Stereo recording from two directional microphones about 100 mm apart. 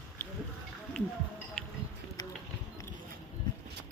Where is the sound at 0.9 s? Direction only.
10° left (ahead or behind).